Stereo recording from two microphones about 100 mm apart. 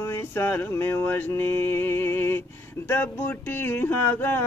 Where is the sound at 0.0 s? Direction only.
25° left (ahead or behind).